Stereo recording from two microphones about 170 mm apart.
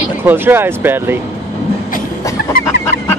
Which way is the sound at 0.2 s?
10° right (ahead or behind).